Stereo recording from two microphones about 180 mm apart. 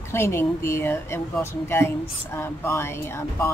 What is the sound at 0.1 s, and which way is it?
Speech, 15° left (ahead or behind).